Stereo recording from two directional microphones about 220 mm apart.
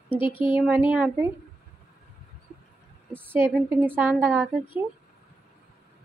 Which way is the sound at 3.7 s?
10° right (ahead or behind).